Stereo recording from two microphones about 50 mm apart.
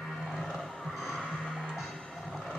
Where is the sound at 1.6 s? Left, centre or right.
Centre.